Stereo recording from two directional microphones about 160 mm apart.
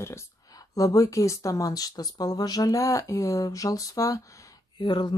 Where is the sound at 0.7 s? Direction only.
20° left (ahead or behind).